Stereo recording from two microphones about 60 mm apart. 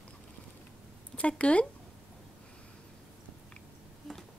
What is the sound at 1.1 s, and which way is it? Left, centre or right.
Speech, left.